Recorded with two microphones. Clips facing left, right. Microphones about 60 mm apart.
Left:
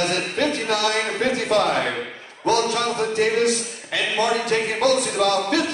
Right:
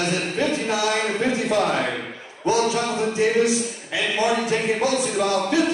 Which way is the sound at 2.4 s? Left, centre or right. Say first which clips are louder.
Even; left.